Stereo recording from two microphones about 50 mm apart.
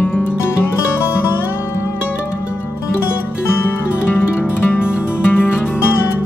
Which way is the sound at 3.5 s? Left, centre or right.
Left.